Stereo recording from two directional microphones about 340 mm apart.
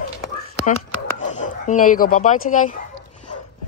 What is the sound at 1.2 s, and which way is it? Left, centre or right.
Speech, left.